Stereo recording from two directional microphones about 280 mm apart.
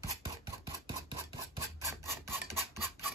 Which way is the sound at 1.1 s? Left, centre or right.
Centre.